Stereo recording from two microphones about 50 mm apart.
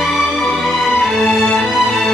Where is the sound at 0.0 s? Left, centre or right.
Centre.